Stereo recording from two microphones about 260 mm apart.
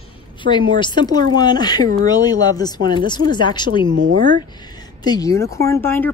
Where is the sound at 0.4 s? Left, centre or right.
Centre.